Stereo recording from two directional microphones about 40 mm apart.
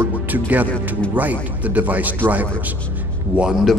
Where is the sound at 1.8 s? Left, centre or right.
Right.